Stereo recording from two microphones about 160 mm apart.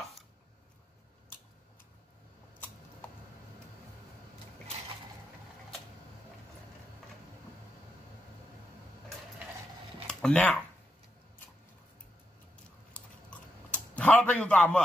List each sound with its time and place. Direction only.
10.0 s speech: 5° left (ahead or behind)
12.9 s chewing: 10° left (ahead or behind)